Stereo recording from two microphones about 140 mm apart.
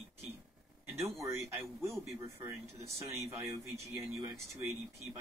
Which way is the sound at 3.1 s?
20° right (ahead or behind).